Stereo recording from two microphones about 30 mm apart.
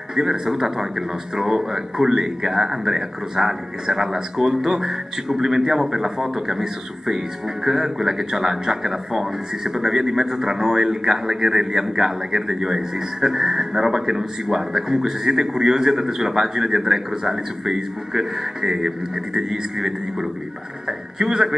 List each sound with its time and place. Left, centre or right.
0.1 s speech: centre